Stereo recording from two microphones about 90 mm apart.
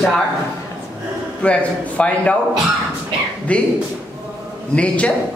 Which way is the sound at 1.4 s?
15° left (ahead or behind).